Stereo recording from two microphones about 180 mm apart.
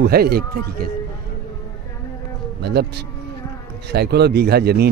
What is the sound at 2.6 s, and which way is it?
A man's voice, 65° right (ahead or behind).